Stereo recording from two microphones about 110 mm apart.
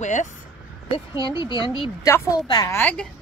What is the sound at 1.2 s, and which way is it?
Speech, 45° left (ahead or behind).